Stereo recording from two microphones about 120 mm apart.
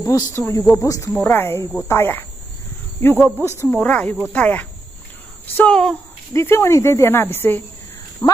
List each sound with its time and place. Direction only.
0.0 s speech: 30° left (ahead or behind)
3.3 s speech: 20° left (ahead or behind)
3.6 s speech: 10° left (ahead or behind)
6.3 s speech: 20° left (ahead or behind)